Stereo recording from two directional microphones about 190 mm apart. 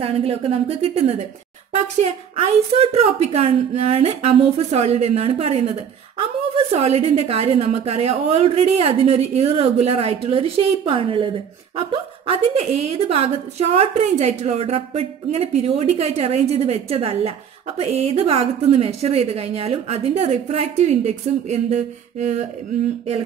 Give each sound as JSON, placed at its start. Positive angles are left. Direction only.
{"t": 0.0, "sound": "a woman's voice", "side_deg": -30}